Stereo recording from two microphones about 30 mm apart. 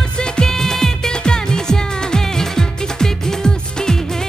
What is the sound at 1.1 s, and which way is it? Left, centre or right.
Music, left.